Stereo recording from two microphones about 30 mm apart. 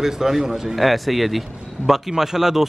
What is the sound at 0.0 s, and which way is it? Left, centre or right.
Speech, centre.